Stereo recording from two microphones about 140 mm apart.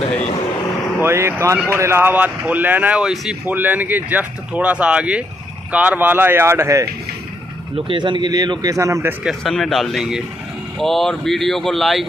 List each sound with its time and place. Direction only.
1.0 s speech: 20° right (ahead or behind)
7.7 s speech: 35° right (ahead or behind)
9.2 s speech: centre (ahead or behind)